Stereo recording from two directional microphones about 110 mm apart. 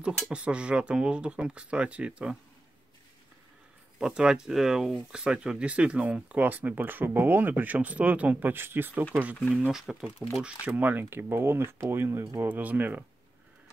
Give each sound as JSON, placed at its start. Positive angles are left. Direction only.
{"t": 0.0, "sound": "speech", "side_deg": -10}
{"t": 4.0, "sound": "speech", "side_deg": -5}